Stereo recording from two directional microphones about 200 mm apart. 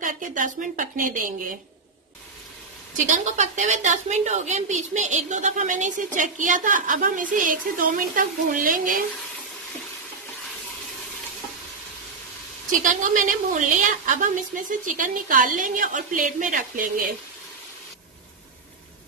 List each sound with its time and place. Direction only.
0.0 s a woman's voice: 40° right (ahead or behind)
3.1 s a woman's voice: 35° right (ahead or behind)
12.8 s a woman's voice: 40° right (ahead or behind)